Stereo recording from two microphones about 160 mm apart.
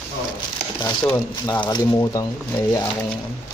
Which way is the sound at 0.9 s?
20° left (ahead or behind).